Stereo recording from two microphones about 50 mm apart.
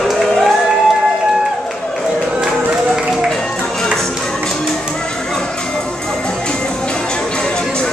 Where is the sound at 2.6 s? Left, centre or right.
Centre.